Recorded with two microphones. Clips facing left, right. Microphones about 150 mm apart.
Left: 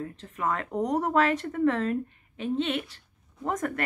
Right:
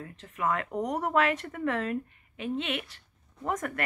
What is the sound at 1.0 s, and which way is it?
A woman's voice, 35° left (ahead or behind).